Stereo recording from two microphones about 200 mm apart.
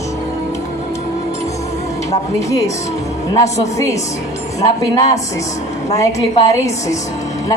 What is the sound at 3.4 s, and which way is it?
Speech, 35° left (ahead or behind).